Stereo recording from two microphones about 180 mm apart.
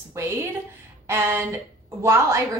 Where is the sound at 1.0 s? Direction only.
15° right (ahead or behind).